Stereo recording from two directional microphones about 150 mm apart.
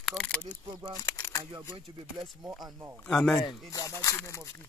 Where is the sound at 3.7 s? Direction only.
20° left (ahead or behind).